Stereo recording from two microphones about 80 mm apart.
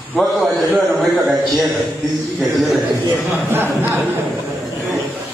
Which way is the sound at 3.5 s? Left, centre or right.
Right.